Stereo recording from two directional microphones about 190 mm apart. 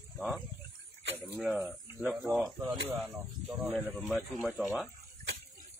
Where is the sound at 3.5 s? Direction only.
Centre (ahead or behind).